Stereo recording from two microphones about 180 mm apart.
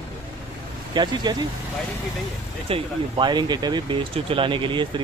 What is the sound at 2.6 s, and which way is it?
Speech, 30° right (ahead or behind).